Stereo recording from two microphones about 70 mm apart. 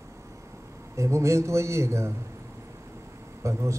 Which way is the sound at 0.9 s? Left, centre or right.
Right.